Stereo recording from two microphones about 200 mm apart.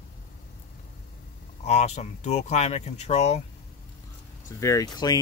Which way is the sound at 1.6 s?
35° left (ahead or behind).